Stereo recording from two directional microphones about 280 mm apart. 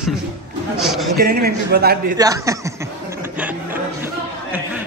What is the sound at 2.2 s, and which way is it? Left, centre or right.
Chuckle, centre.